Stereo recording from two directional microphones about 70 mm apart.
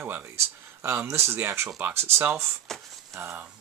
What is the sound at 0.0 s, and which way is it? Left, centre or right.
Speech, right.